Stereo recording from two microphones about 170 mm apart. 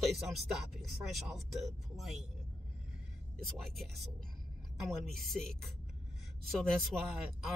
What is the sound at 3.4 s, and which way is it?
Speech, centre (ahead or behind).